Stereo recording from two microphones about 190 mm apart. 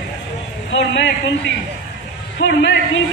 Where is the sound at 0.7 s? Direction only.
75° left (ahead or behind).